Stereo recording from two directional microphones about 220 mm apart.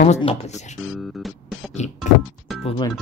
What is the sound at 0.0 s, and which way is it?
Speech, 30° left (ahead or behind).